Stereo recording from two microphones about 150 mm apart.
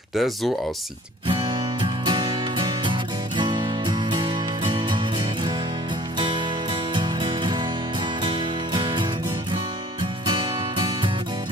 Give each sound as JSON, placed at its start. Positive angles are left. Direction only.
{"t": 0.1, "sound": "speech", "side_deg": 0}
{"t": 1.2, "sound": "music", "side_deg": -35}
{"t": 7.0, "sound": "music", "side_deg": -30}
{"t": 10.2, "sound": "music", "side_deg": -30}